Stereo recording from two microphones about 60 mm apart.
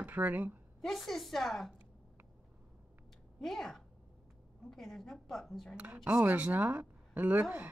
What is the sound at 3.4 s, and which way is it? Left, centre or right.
A child's voice, centre.